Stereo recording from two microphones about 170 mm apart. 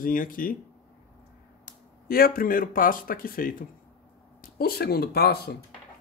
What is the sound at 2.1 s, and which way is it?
Speech, 60° left (ahead or behind).